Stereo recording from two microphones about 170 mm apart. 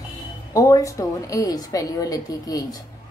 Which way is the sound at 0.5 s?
20° left (ahead or behind).